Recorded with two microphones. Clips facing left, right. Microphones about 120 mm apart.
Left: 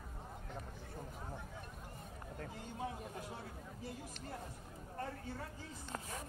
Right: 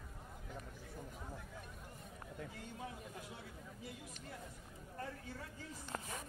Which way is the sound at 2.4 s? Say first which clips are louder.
Left 4 dB; 40° left (ahead or behind).